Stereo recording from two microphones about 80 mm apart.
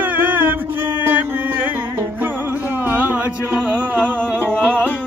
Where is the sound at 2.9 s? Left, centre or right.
Right.